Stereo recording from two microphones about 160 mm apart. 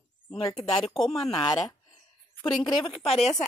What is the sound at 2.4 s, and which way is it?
Speech, 25° left (ahead or behind).